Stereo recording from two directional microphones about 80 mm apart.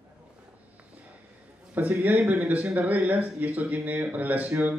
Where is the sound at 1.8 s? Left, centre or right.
Right.